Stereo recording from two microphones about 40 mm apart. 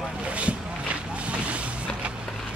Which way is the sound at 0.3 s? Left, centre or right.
Right.